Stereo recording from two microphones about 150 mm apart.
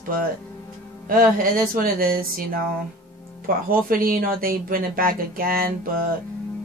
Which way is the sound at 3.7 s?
70° right (ahead or behind).